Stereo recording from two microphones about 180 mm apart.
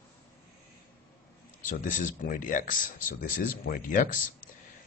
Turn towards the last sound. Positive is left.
turn(degrees=50)  # may be behind; listen again after turning